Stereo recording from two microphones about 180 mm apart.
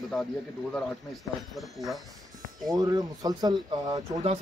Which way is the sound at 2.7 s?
20° right (ahead or behind).